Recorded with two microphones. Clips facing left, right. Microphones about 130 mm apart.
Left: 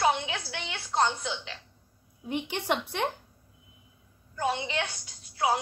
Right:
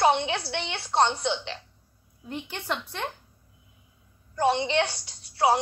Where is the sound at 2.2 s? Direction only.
15° left (ahead or behind).